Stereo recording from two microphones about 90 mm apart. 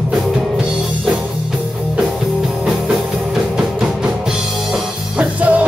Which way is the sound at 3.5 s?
5° right (ahead or behind).